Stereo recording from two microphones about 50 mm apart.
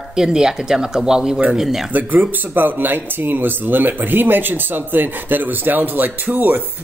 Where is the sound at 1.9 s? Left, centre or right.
Right.